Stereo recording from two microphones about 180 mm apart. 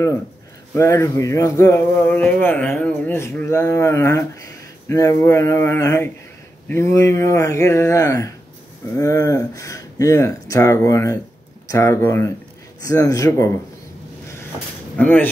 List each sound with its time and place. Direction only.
0.7 s speech: 15° left (ahead or behind)
15.0 s speech: 10° left (ahead or behind)